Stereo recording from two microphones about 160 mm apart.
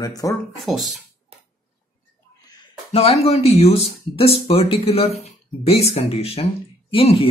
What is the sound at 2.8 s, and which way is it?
Speech, 40° left (ahead or behind).